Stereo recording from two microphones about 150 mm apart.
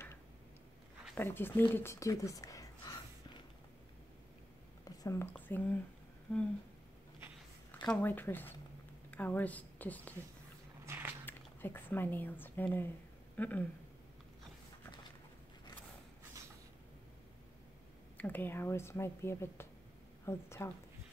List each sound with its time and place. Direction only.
1.1 s speech: 15° left (ahead or behind)
4.8 s a sound: 20° left (ahead or behind)
5.5 s speech: 10° left (ahead or behind)
7.7 s a woman's voice: 5° left (ahead or behind)
10.9 s biting: 15° right (ahead or behind)
11.2 s speech: 15° left (ahead or behind)
18.1 s speech: 10° left (ahead or behind)